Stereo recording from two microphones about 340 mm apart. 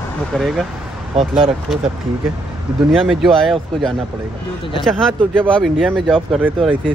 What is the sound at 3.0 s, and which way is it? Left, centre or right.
Speech, centre.